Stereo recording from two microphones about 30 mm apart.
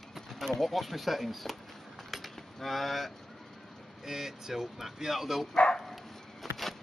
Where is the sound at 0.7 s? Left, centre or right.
Centre.